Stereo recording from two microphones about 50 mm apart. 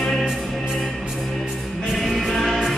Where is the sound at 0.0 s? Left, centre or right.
Centre.